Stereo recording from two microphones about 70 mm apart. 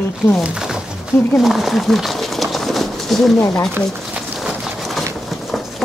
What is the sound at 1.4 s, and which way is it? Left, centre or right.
Bird, centre.